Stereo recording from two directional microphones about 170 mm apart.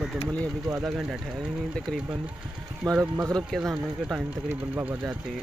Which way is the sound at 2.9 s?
20° right (ahead or behind).